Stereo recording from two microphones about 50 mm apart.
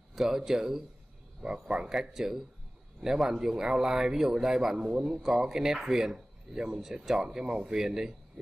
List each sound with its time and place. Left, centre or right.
0.1 s speech: centre